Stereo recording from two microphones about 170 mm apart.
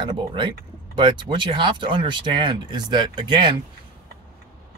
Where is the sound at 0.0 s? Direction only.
30° right (ahead or behind).